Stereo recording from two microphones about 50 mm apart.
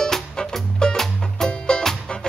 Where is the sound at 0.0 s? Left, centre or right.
Centre.